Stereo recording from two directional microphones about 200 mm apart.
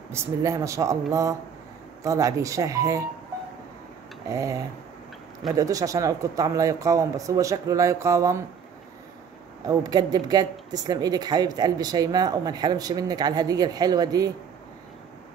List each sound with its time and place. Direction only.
0.1 s speech: 15° right (ahead or behind)
4.3 s speech: 15° right (ahead or behind)
5.6 s speech: 15° right (ahead or behind)
9.7 s speech: 20° right (ahead or behind)